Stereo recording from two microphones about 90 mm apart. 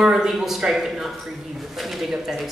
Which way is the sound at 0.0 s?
5° right (ahead or behind).